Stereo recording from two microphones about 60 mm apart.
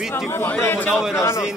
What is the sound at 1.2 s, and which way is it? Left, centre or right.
Speech, left.